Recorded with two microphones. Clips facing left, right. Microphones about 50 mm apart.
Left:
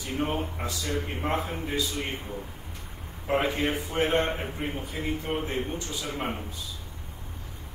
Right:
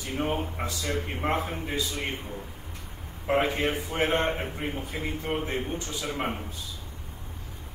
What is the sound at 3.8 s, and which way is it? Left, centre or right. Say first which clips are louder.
Speech: left 1 dB; right.